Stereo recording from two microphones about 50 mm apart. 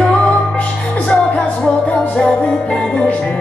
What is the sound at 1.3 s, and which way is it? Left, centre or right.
Music, left.